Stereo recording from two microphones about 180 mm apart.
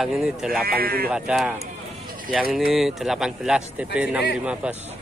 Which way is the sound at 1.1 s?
5° right (ahead or behind).